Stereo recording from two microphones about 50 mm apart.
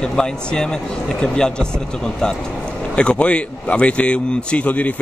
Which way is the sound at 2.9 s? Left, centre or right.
Left.